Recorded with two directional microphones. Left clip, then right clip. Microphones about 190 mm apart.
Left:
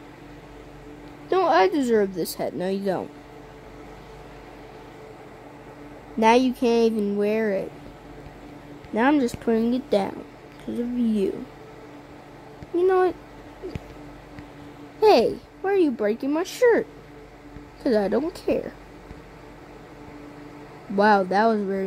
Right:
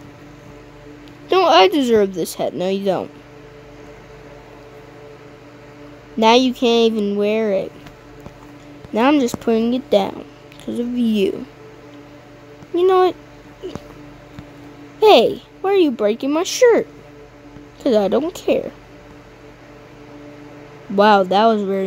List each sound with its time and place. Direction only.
1.3 s a woman's voice: 10° right (ahead or behind)
6.1 s speech: 5° right (ahead or behind)
8.9 s a woman's voice: 10° right (ahead or behind)
12.7 s a woman's voice: 5° right (ahead or behind)
15.0 s a child's voice: 5° right (ahead or behind)
17.8 s speech: centre (ahead or behind)
20.9 s speech: centre (ahead or behind)